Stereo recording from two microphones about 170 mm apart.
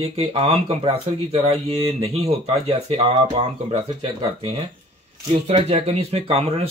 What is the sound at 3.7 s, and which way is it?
Speech, 40° right (ahead or behind).